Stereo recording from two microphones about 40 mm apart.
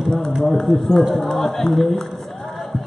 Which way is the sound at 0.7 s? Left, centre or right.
Centre.